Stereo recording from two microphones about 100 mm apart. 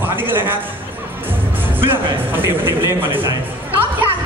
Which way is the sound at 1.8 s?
20° right (ahead or behind).